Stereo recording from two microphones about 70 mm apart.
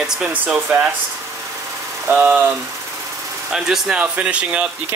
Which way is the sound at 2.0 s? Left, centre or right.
Right.